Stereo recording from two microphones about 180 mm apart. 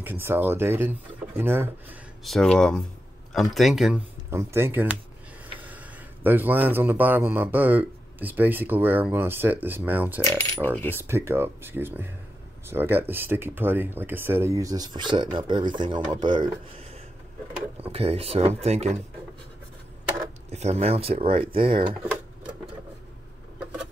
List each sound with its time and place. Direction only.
0.0 s a man's voice: 10° right (ahead or behind)
2.2 s speech: centre (ahead or behind)
4.3 s a man's voice: 15° right (ahead or behind)
10.2 s coin: 15° left (ahead or behind)
10.9 s a man's voice: 15° right (ahead or behind); by 18.9 s 35° right (ahead or behind)
20.5 s speech: 35° right (ahead or behind)